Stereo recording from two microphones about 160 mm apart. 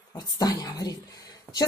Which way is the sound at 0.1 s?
25° left (ahead or behind).